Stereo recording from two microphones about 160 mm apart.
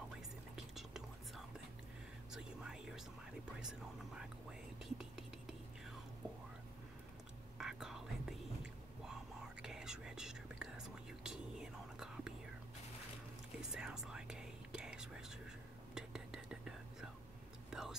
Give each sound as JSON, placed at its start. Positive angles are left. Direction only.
{"t": 0.6, "sound": "whispering", "side_deg": -5}
{"t": 4.2, "sound": "whispering", "side_deg": -5}
{"t": 7.5, "sound": "whispering", "side_deg": -5}
{"t": 9.6, "sound": "whispering", "side_deg": -5}
{"t": 13.6, "sound": "whispering", "side_deg": -5}